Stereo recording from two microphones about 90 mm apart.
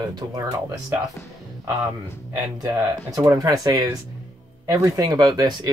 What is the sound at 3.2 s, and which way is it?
Speech, 45° right (ahead or behind).